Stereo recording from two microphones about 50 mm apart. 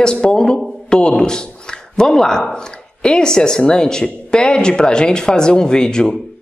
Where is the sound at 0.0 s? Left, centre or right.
Centre.